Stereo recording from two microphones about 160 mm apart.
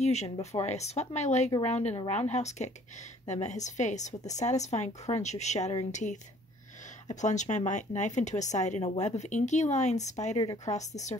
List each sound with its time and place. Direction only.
0.0 s speech: 45° left (ahead or behind)
10.4 s a woman's voice: 25° left (ahead or behind)
10.7 s speech: 45° left (ahead or behind)